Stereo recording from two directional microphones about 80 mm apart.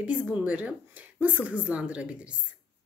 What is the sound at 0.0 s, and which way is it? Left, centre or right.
Speech, centre.